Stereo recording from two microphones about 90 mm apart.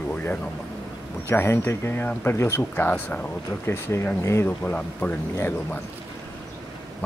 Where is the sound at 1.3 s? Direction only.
25° left (ahead or behind).